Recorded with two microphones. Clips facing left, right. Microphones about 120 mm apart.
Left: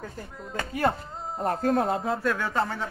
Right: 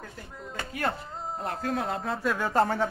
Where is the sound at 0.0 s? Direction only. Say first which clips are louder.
Left 3 dB; 40° left (ahead or behind).